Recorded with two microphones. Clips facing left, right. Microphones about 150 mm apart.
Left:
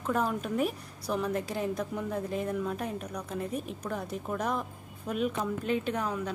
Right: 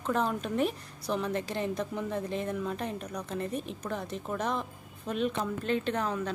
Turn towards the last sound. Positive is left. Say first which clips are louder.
# right 1 dB
turn(degrees=10)  # may be behind; listen again after turning